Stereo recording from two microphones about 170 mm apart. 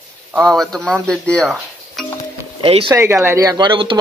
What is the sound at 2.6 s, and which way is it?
Speech, 35° right (ahead or behind).